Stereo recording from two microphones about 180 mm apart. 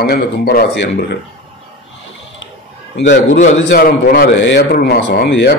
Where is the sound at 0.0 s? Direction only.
60° left (ahead or behind).